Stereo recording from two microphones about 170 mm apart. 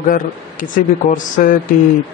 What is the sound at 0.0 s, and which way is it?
Speech, 50° left (ahead or behind).